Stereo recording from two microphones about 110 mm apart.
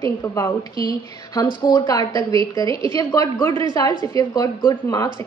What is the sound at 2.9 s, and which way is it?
A woman's voice, 30° left (ahead or behind).